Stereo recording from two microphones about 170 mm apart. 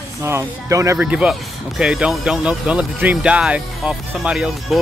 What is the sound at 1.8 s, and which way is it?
Speech, 5° right (ahead or behind).